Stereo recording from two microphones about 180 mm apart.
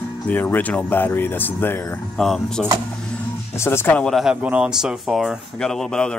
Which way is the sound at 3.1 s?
15° left (ahead or behind).